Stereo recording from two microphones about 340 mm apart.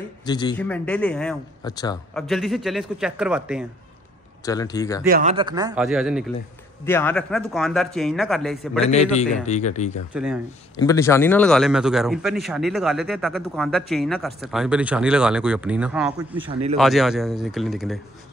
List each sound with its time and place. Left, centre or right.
0.2 s a man's voice: centre
2.2 s a man's voice: centre
4.5 s speech: centre
5.0 s a man's voice: right; by 8.5 s centre
8.9 s speech: centre
10.1 s a man's voice: centre
10.8 s a man's voice: centre
16.7 s a man's voice: centre